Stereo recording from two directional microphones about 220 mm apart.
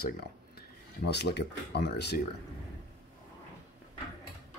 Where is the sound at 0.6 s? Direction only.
50° left (ahead or behind).